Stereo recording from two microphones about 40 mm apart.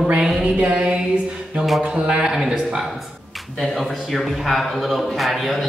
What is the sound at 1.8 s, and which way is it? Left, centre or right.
Speech, right.